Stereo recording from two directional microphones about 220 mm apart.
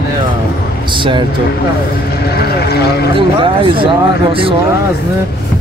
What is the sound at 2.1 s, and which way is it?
Speech, 45° left (ahead or behind).